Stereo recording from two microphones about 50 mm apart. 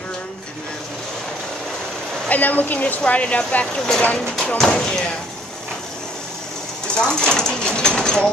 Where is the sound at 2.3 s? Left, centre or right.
Left.